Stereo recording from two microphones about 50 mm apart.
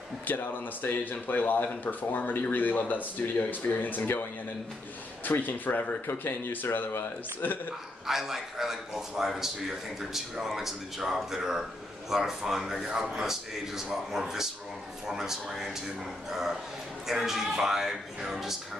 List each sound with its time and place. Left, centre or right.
0.3 s speech: left
6.0 s speech: left
6.5 s speech: left
8.1 s a man's voice: centre